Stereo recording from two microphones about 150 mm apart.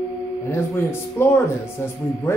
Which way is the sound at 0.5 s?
15° left (ahead or behind).